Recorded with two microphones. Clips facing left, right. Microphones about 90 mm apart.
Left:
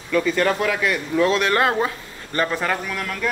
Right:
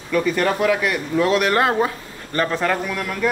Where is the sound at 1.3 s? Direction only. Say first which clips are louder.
Right 1 dB; 30° right (ahead or behind).